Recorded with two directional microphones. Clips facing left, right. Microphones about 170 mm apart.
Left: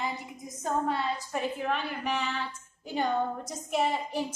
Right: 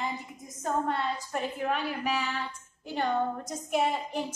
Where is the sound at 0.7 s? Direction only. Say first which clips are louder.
Even; centre (ahead or behind).